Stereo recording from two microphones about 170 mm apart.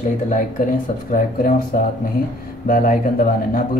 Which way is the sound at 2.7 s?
55° left (ahead or behind).